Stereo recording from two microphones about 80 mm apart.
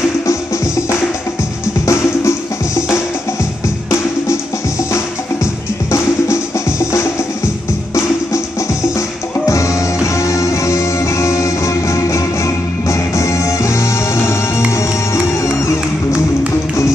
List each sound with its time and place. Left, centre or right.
0.3 s music: left
4.9 s music: left
9.5 s music: left
15.4 s music: left